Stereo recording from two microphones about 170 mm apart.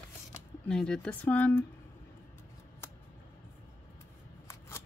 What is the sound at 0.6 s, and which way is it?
Speech, 5° left (ahead or behind).